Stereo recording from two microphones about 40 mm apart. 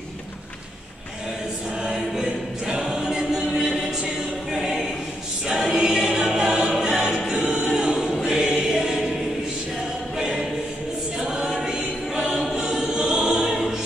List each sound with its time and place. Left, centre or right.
1.8 s choir: centre
10.1 s choir: centre
11.1 s a capella: centre
12.4 s choir: centre